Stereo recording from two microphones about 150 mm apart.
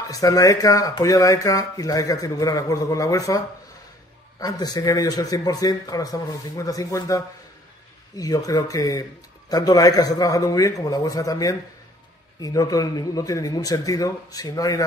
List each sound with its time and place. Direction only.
0.1 s speech: 25° left (ahead or behind)